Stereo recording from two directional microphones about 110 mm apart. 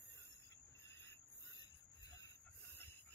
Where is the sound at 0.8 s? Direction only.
25° left (ahead or behind).